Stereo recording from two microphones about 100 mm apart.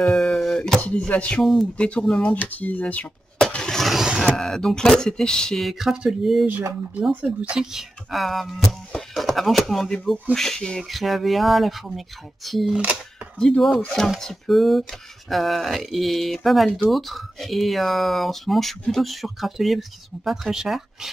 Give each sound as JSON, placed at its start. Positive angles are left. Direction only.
{"t": 0.0, "sound": "speech", "side_deg": 5}
{"t": 1.4, "sound": "speech", "side_deg": 5}
{"t": 4.4, "sound": "speech", "side_deg": 5}